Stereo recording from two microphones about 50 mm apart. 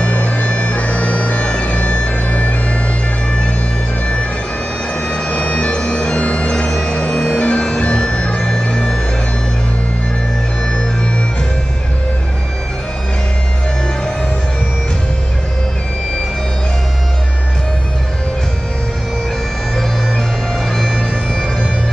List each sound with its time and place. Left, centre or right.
0.0 s bagpipes: left
5.0 s music: left
20.7 s music: centre